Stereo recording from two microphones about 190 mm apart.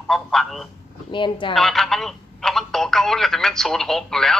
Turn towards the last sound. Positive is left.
turn(degrees=0)  # may be behind; listen again after turning